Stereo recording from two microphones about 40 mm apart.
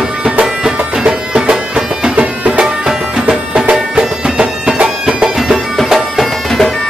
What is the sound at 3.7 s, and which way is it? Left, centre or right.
Bagpipes, right.